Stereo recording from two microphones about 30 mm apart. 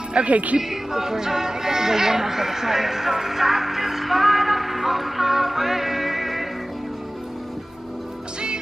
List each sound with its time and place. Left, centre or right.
0.1 s speech: right
0.6 s music: centre